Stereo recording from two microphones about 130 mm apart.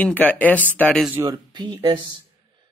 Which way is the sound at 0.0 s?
10° left (ahead or behind).